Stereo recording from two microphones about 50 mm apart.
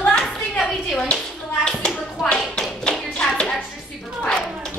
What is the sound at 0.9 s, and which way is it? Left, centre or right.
Speech, left.